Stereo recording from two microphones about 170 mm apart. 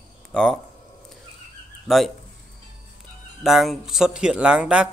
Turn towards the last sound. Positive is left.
turn(degrees=-5)  # may be behind; listen again after turning